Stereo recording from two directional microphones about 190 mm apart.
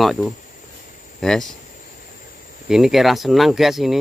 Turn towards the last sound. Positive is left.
turn(degrees=0)  # may be behind; listen again after turning